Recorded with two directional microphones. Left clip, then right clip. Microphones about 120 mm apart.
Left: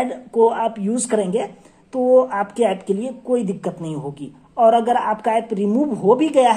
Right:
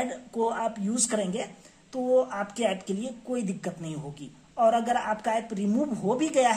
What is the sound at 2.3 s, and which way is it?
Speech, 15° left (ahead or behind).